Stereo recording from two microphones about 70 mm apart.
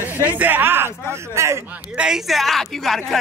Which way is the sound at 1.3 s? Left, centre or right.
Right.